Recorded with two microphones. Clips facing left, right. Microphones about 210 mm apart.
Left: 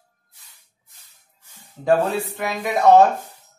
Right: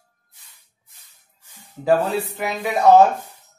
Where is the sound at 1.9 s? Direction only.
Centre (ahead or behind).